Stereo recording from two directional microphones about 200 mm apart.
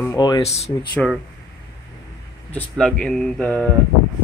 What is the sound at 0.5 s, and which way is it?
Speech, 30° left (ahead or behind).